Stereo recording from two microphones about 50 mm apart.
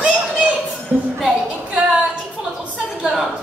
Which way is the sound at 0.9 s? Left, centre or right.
Right.